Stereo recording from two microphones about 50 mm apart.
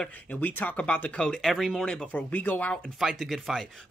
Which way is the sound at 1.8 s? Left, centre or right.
Centre.